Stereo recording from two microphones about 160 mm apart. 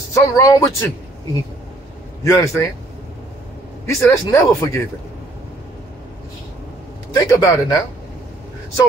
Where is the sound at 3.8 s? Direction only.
20° left (ahead or behind).